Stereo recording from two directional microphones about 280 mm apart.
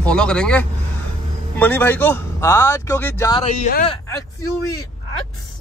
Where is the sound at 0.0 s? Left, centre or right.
Centre; by 4.0 s left.